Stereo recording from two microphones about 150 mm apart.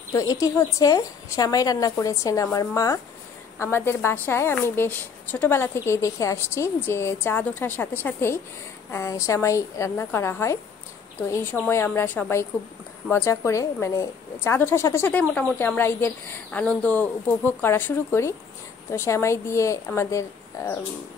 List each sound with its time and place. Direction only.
0.1 s a woman's voice: 25° left (ahead or behind)
11.6 s a woman's voice: 15° left (ahead or behind)